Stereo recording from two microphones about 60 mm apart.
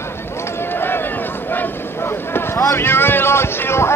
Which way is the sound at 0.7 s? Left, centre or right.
Left.